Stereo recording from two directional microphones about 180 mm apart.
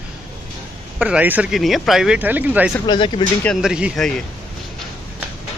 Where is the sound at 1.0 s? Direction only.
5° right (ahead or behind).